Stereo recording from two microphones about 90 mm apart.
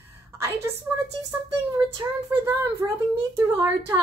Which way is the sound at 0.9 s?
20° right (ahead or behind).